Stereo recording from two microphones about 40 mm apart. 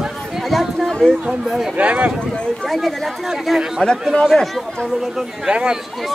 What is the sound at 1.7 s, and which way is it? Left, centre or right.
Speech, right.